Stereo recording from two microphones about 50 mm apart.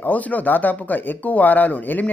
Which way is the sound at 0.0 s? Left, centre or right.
Left.